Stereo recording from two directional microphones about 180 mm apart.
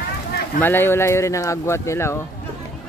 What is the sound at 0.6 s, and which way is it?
Speech, 10° left (ahead or behind).